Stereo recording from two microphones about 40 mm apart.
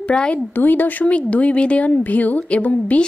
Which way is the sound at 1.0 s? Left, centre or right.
Left.